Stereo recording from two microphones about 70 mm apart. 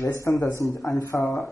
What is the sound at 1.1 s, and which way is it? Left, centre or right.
Speech, left.